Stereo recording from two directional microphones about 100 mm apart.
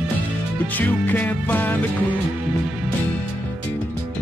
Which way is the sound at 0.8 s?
15° left (ahead or behind).